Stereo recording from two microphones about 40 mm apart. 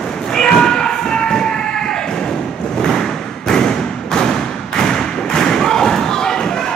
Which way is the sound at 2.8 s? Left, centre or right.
Centre.